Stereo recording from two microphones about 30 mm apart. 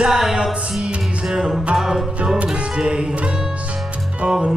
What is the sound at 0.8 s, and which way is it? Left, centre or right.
Music, right.